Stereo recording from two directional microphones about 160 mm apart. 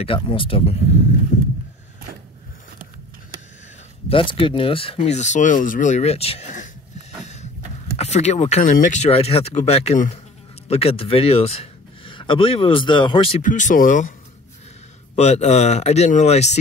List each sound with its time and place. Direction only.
0.0 s speech: 35° left (ahead or behind)
4.1 s speech: 35° left (ahead or behind)
13.4 s speech: 55° left (ahead or behind)
15.1 s speech: 45° left (ahead or behind)